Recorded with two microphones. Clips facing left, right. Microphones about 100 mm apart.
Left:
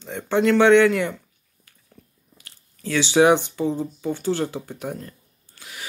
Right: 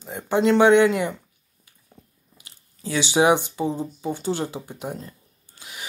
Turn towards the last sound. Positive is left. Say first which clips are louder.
# even
turn(degrees=-20)  # may be behind; listen again after turning